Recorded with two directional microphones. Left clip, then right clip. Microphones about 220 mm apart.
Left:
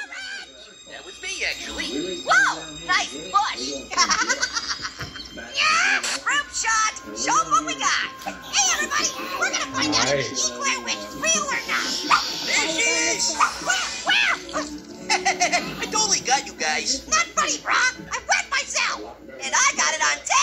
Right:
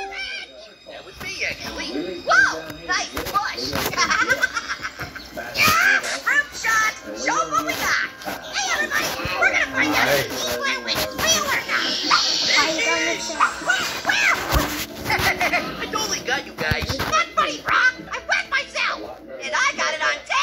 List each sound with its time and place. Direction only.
1.4 s music: 40° left (ahead or behind)
3.9 s baby laughter: 40° left (ahead or behind)
5.6 s music: 35° left (ahead or behind); by 7.2 s 55° left (ahead or behind)
7.2 s music: 35° left (ahead or behind)
8.5 s a sound: 35° left (ahead or behind)
9.5 s children playing: 50° left (ahead or behind)
10.6 s music: 40° left (ahead or behind)
12.1 s a sound: 40° left (ahead or behind)
13.0 s music: 55° left (ahead or behind)
13.4 s music: 35° left (ahead or behind)
15.0 s music: 45° left (ahead or behind)
19.5 s a sound: 35° left (ahead or behind)